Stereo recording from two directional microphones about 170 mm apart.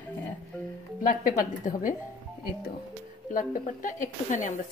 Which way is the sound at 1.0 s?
50° left (ahead or behind).